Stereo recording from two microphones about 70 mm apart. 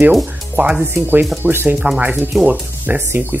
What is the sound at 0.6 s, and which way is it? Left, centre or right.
Speech, right.